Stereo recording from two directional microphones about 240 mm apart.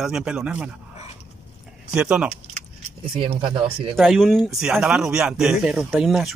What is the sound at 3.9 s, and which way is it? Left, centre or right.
Speech, centre.